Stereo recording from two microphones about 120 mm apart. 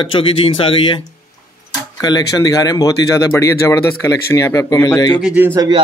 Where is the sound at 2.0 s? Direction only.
35° left (ahead or behind).